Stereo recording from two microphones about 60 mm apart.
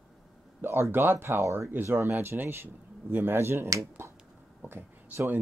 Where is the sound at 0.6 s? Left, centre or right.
Right.